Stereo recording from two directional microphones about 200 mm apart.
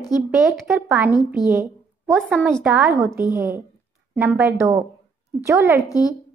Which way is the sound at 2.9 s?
15° right (ahead or behind).